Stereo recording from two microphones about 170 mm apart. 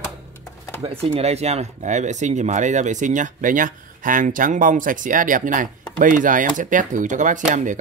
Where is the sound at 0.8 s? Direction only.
35° right (ahead or behind).